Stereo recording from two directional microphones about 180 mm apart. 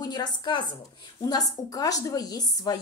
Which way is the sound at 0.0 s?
25° left (ahead or behind).